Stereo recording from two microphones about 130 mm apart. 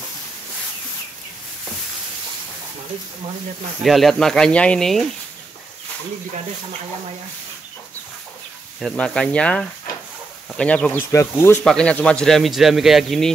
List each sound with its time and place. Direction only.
3.8 s speech: centre (ahead or behind)
8.8 s speech: 5° left (ahead or behind)
11.1 s speech: 20° left (ahead or behind)
11.6 s speech: 5° left (ahead or behind)